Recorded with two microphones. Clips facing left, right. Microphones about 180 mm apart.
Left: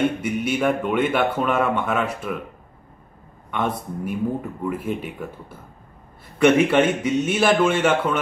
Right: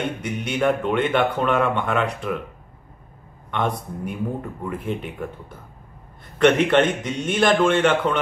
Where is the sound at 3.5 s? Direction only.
5° left (ahead or behind).